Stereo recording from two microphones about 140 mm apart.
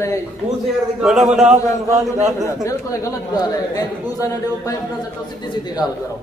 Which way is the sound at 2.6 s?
25° left (ahead or behind).